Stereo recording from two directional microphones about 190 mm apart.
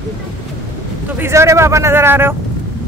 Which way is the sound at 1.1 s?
15° right (ahead or behind).